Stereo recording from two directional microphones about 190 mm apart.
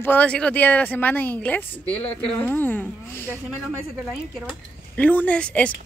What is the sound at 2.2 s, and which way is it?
Speech, 10° left (ahead or behind).